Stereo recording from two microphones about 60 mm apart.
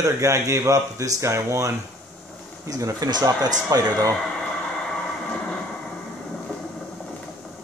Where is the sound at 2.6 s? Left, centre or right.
Right.